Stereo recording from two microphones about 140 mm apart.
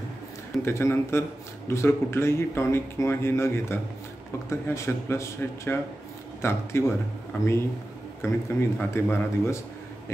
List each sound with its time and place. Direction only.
0.6 s speech: 20° left (ahead or behind)